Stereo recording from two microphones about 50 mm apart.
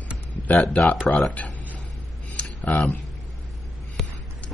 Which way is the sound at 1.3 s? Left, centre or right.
Left.